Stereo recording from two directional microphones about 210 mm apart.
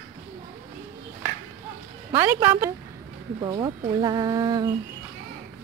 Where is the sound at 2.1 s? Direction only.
10° right (ahead or behind).